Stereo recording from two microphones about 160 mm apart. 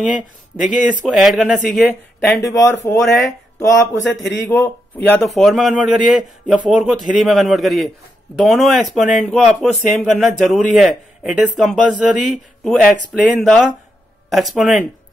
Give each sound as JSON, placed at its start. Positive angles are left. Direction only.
{"t": 0.5, "sound": "speech", "side_deg": 0}
{"t": 2.4, "sound": "speech", "side_deg": 20}
{"t": 3.0, "sound": "speech", "side_deg": 0}
{"t": 3.6, "sound": "speech", "side_deg": 20}